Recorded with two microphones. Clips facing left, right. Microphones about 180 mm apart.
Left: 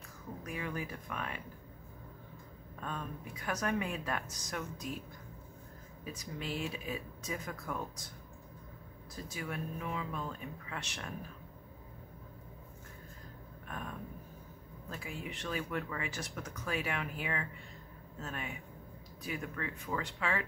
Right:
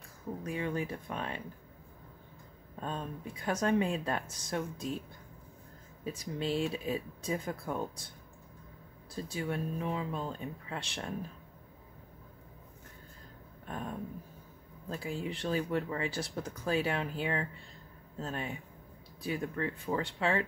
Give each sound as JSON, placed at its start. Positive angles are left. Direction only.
{"t": 0.4, "sound": "speech", "side_deg": -30}
{"t": 2.7, "sound": "speech", "side_deg": -30}
{"t": 6.0, "sound": "speech", "side_deg": -30}
{"t": 9.1, "sound": "speech", "side_deg": -30}
{"t": 13.7, "sound": "a sound", "side_deg": -30}
{"t": 14.9, "sound": "speech", "side_deg": -30}